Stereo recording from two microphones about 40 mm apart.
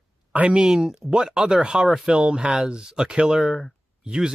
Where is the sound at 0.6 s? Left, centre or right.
Centre.